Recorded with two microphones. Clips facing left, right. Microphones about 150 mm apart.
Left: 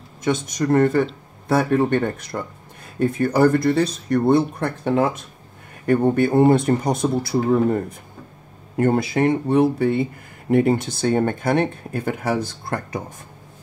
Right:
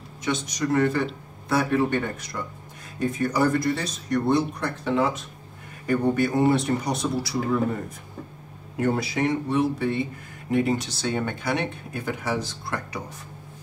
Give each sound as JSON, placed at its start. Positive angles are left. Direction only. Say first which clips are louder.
{"t": 0.2, "sound": "speech", "louder": "left 5 dB", "side_deg": 50}